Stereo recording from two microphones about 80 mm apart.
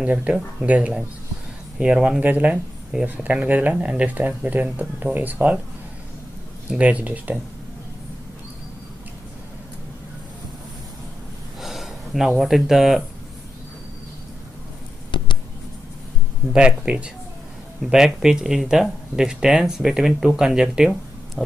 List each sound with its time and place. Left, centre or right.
0.0 s speech: centre
6.7 s speech: centre
11.6 s speech: centre
15.1 s a sound: left
16.5 s speech: centre